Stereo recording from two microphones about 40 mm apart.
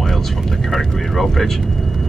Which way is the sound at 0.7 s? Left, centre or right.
Centre.